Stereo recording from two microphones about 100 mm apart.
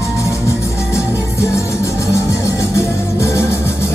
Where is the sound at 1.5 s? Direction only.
30° left (ahead or behind).